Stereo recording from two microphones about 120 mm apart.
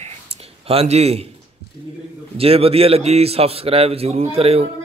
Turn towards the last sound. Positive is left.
turn(degrees=-55)  # may be behind; listen again after turning